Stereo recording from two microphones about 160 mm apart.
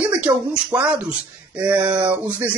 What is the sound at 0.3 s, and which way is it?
Speech, 10° right (ahead or behind).